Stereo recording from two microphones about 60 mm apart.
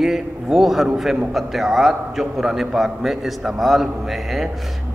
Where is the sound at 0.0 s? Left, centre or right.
Centre.